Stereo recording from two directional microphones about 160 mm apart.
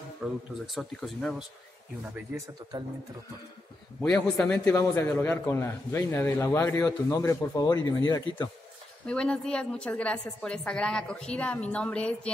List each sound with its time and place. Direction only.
0.2 s speech: centre (ahead or behind)
4.0 s a man's voice: 5° left (ahead or behind); by 8.5 s 25° left (ahead or behind)
9.0 s a man's voice: 5° left (ahead or behind)